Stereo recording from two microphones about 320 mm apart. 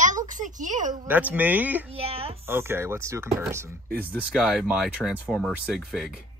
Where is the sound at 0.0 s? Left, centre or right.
Right.